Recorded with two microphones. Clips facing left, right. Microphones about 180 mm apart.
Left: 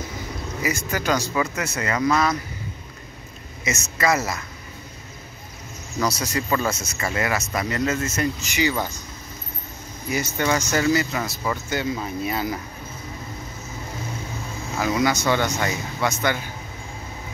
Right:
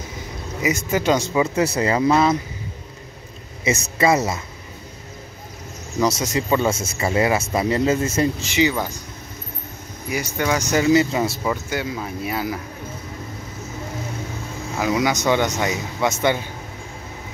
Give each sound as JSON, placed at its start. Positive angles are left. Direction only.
{"t": 0.6, "sound": "speech", "side_deg": -20}
{"t": 3.6, "sound": "speech", "side_deg": -30}
{"t": 5.9, "sound": "speech", "side_deg": -20}
{"t": 10.0, "sound": "speech", "side_deg": -10}
{"t": 11.4, "sound": "speech", "side_deg": -10}
{"t": 14.8, "sound": "speech", "side_deg": -15}